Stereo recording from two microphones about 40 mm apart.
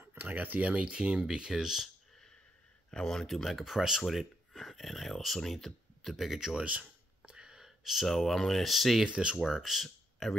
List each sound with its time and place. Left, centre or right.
0.1 s speech: right
1.2 s speech: centre
2.9 s speech: centre
6.6 s speech: right; by 9.0 s centre
9.0 s speech: right
9.4 s speech: centre